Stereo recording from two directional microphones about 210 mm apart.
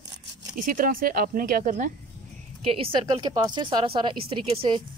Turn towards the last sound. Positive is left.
turn(degrees=-25)  # may be behind; listen again after turning